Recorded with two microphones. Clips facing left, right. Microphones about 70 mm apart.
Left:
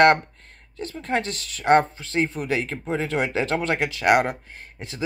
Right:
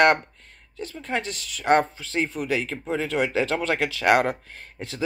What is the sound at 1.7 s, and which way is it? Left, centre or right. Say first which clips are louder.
Speech: left 2 dB; left.